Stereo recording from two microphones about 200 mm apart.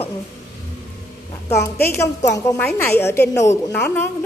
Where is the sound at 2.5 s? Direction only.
10° left (ahead or behind).